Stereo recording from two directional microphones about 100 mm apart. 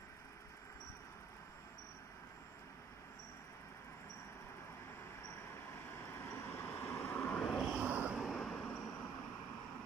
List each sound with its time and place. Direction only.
5.9 s vehicle: 25° left (ahead or behind)
7.7 s vehicle: 15° right (ahead or behind)
8.2 s vehicle: centre (ahead or behind)